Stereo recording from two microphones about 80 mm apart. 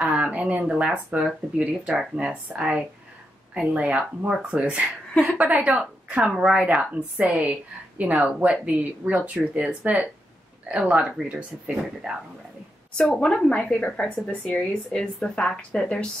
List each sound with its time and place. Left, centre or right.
0.0 s speech: centre
13.2 s speech: centre